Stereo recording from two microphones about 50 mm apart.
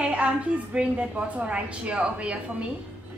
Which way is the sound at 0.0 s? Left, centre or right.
Right.